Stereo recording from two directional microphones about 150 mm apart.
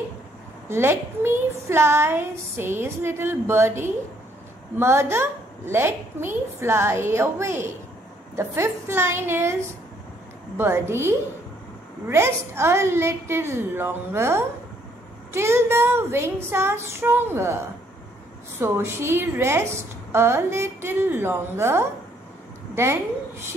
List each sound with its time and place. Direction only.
0.7 s a woman's voice: 15° right (ahead or behind)
18.6 s a woman's voice: 15° right (ahead or behind)